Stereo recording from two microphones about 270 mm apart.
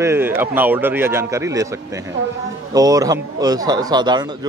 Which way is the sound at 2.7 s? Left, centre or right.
Centre.